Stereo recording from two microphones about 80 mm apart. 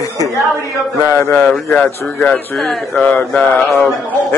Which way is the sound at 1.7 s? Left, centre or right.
Centre.